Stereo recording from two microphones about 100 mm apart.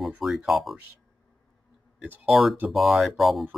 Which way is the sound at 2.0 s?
15° right (ahead or behind).